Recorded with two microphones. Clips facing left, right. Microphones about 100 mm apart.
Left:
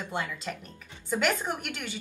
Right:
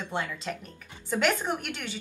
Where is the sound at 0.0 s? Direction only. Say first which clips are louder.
Right 1 dB; 5° left (ahead or behind).